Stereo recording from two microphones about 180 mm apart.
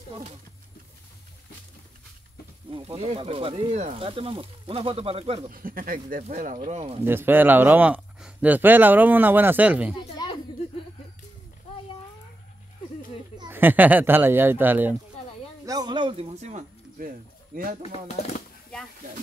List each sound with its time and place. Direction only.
2.7 s speech: 30° right (ahead or behind)
5.5 s speech: 50° right (ahead or behind); by 7.0 s 35° right (ahead or behind)
7.1 s speech: 10° right (ahead or behind)
9.9 s a sound: 25° left (ahead or behind)
13.5 s speech: 10° right (ahead or behind); by 17.7 s 50° right (ahead or behind)
17.9 s speech: 35° left (ahead or behind)